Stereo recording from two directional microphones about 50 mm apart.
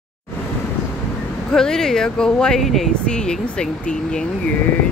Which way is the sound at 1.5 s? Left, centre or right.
Centre.